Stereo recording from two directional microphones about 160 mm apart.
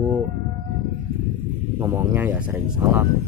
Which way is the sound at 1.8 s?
15° right (ahead or behind).